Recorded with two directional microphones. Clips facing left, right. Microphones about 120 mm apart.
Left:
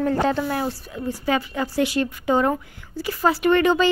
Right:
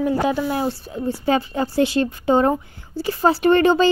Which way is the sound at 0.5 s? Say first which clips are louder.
Right 3 dB; 25° right (ahead or behind).